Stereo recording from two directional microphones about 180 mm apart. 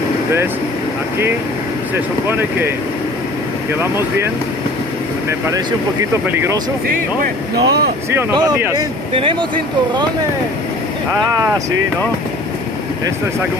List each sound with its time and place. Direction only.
2.2 s speech: 10° right (ahead or behind)
5.5 s speech: 15° right (ahead or behind)
7.5 s speech: 65° right (ahead or behind)
8.1 s speech: 20° right (ahead or behind)